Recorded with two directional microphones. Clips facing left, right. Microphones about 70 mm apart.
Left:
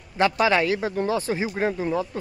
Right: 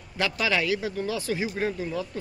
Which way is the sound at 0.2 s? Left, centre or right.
Left.